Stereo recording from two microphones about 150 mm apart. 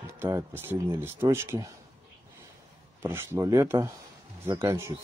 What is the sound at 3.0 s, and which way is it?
Speech, 15° right (ahead or behind).